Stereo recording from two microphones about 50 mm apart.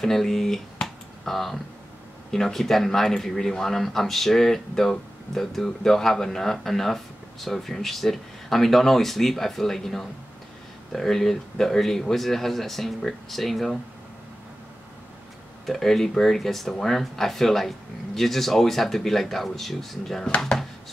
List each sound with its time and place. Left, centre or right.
0.0 s speech: centre
0.7 s finger snapping: centre
2.3 s speech: centre
15.6 s speech: centre
20.2 s speech: left